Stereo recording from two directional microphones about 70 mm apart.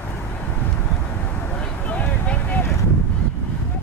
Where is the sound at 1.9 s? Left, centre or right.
Centre.